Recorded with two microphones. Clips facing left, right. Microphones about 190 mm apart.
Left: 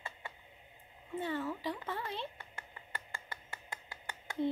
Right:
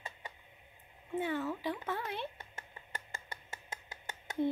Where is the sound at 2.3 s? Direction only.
20° right (ahead or behind).